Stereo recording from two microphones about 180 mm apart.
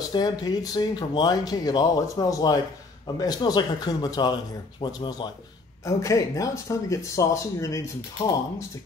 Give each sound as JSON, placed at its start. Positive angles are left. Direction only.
{"t": 0.1, "sound": "speech", "side_deg": 20}